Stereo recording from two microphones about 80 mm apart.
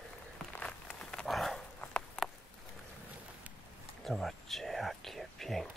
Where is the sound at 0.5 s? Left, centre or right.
Centre.